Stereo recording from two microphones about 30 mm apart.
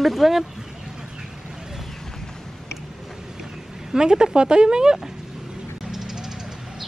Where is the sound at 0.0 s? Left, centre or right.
Centre.